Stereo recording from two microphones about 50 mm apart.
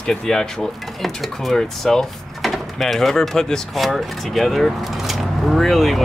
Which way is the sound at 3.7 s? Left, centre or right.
Centre.